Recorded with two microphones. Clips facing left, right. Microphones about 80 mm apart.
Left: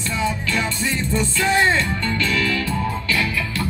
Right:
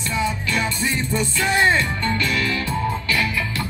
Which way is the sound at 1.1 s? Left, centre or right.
Centre.